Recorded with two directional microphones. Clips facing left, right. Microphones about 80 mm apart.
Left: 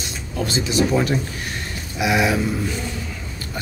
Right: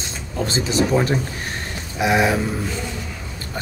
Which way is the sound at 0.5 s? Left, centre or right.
Right.